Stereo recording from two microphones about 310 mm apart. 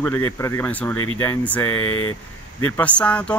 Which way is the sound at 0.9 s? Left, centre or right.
Left.